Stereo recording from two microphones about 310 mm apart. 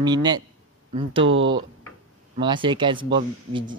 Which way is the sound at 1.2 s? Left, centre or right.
Right.